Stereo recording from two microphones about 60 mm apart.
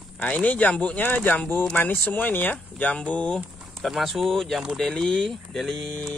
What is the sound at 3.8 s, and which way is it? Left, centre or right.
Speech, centre.